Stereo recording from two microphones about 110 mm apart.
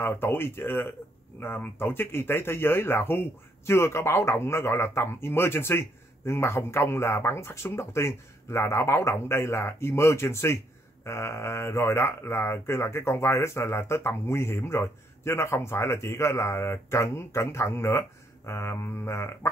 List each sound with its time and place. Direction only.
0.0 s speech: 20° left (ahead or behind)